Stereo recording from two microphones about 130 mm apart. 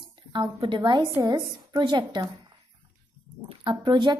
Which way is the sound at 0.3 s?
40° right (ahead or behind).